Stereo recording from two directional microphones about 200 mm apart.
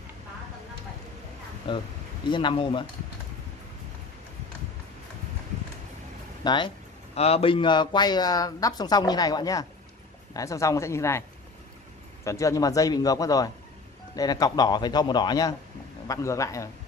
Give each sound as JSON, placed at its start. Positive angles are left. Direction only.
{"t": 1.7, "sound": "speech", "side_deg": 25}
{"t": 6.4, "sound": "speech", "side_deg": 25}
{"t": 12.3, "sound": "speech", "side_deg": 15}